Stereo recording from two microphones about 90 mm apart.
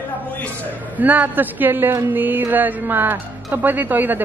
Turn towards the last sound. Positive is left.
turn(degrees=-20)  # may be behind; listen again after turning